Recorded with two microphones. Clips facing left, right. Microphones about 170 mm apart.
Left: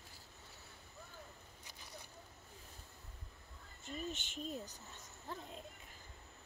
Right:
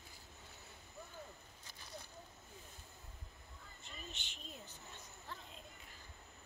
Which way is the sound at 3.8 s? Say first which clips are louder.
Left 10 dB; 45° left (ahead or behind).